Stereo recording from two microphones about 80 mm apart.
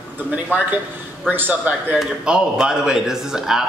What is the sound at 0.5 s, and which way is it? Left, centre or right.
Speech, right.